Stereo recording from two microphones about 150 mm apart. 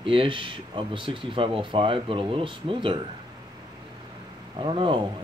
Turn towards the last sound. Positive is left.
turn(degrees=-35)  # may be behind; listen again after turning